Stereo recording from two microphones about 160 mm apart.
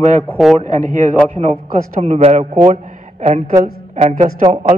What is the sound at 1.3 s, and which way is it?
A man's voice, 45° right (ahead or behind).